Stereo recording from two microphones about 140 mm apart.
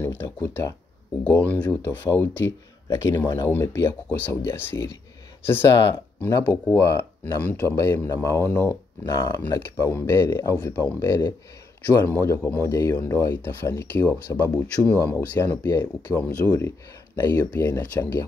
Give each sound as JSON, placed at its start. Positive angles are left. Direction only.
{"t": 0.0, "sound": "speech", "side_deg": 15}
{"t": 9.0, "sound": "speech", "side_deg": 30}
{"t": 9.5, "sound": "speech", "side_deg": 15}
{"t": 11.0, "sound": "speech", "side_deg": 25}